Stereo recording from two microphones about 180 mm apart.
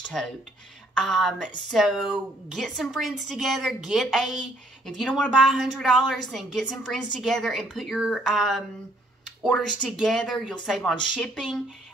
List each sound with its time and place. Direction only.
0.2 s a woman's voice: 5° left (ahead or behind)